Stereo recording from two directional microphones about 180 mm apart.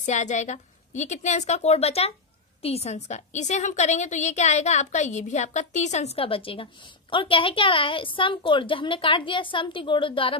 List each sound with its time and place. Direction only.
0.0 s a woman's voice: 40° left (ahead or behind)